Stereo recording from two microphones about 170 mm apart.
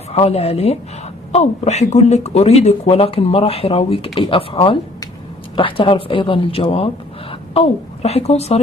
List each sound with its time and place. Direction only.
0.1 s speech: 35° left (ahead or behind)